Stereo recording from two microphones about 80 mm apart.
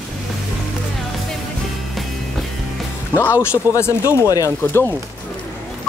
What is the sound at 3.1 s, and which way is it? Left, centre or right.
Speech, left.